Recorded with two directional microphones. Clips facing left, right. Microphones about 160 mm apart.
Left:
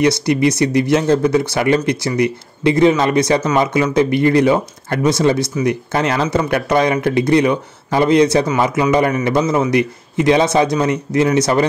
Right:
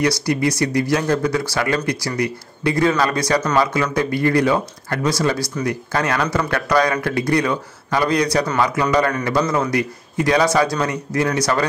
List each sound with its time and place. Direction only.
0.0 s speech: 20° left (ahead or behind)